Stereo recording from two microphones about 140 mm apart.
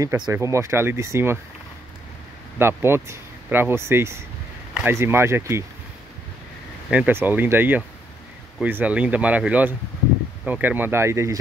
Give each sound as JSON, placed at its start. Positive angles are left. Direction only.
{"t": 0.0, "sound": "speech", "side_deg": -20}
{"t": 2.6, "sound": "speech", "side_deg": -15}
{"t": 6.9, "sound": "speech", "side_deg": -10}